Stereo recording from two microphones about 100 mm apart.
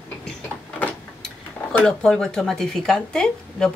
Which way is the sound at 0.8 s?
15° left (ahead or behind).